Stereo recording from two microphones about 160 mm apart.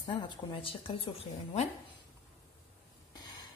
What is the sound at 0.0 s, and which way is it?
A woman's voice, 30° left (ahead or behind).